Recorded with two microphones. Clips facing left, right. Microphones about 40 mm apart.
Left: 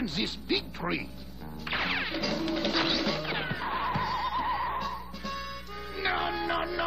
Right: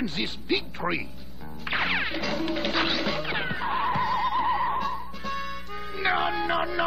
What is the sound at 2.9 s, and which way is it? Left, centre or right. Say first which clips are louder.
Music: right 2 dB; centre.